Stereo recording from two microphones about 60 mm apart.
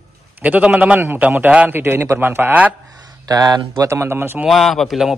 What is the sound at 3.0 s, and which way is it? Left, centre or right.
Speech, right.